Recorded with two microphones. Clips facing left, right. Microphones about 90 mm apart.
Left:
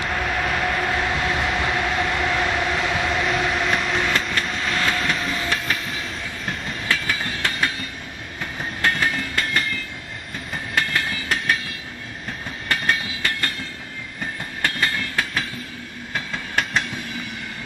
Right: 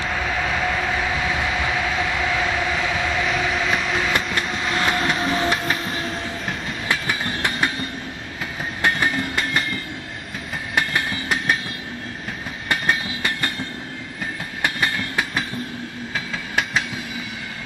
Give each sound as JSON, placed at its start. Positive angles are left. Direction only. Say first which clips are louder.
{"t": 0.0, "sound": "train", "louder": "even", "side_deg": 0}
{"t": 5.3, "sound": "train", "louder": "right 4 dB", "side_deg": -30}
{"t": 5.9, "sound": "train", "louder": "right 4 dB", "side_deg": -40}
{"t": 6.9, "sound": "train", "louder": "right 1 dB", "side_deg": -15}
{"t": 8.8, "sound": "train", "louder": "right 1 dB", "side_deg": -15}
{"t": 9.4, "sound": "train", "louder": "left 1 dB", "side_deg": 0}
{"t": 10.7, "sound": "train", "louder": "right 1 dB", "side_deg": -15}
{"t": 11.2, "sound": "train", "louder": "right 1 dB", "side_deg": -5}
{"t": 14.6, "sound": "train", "louder": "right 1 dB", "side_deg": -15}
{"t": 16.5, "sound": "train", "louder": "even", "side_deg": -5}